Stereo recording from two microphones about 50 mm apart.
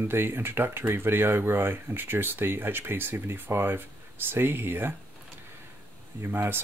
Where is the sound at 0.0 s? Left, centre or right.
Right.